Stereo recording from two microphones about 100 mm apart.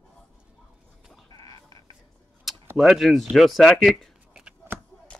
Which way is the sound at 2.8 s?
Centre (ahead or behind).